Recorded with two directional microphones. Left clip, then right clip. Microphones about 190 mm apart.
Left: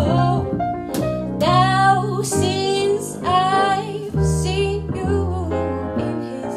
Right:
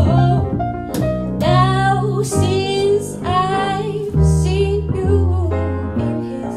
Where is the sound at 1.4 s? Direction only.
45° left (ahead or behind).